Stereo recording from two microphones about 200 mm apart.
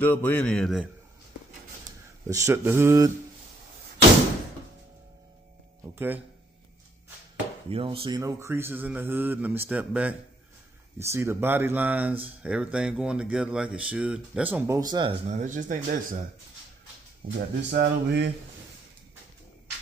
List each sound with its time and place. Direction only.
0.0 s speech: 10° left (ahead or behind)
2.2 s speech: 15° right (ahead or behind)
5.9 s speech: 10° right (ahead or behind)
7.7 s speech: 25° right (ahead or behind)
8.2 s speech: 15° right (ahead or behind)
15.2 s speech: 35° right (ahead or behind)
17.2 s speech: 25° right (ahead or behind)
17.6 s a sound: 55° right (ahead or behind)